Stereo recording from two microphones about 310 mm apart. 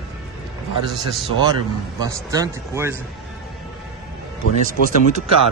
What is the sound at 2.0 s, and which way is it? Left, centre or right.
A man's voice, centre.